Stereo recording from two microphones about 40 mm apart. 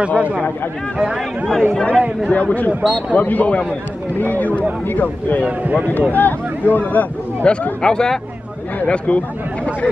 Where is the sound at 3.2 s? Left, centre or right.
Left.